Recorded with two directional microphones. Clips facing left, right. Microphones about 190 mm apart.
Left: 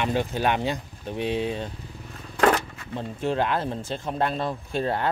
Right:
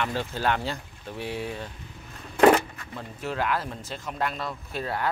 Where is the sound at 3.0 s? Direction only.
25° left (ahead or behind).